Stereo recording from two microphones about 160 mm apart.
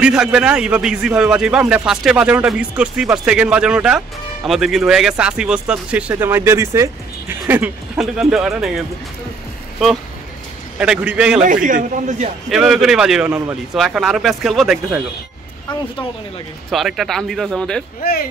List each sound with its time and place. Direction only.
0.0 s a man's voice: 5° right (ahead or behind)
10.8 s a man's voice: 5° right (ahead or behind)
11.4 s a man's voice: 55° right (ahead or behind)
12.4 s a man's voice: 5° right (ahead or behind)
16.7 s a man's voice: centre (ahead or behind)